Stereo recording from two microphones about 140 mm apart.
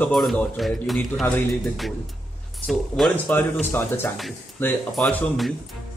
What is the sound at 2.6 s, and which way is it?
Speech, centre (ahead or behind).